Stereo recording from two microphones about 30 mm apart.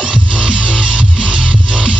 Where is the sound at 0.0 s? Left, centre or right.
Right.